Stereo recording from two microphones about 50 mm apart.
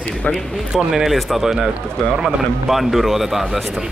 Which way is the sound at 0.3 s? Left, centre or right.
Centre.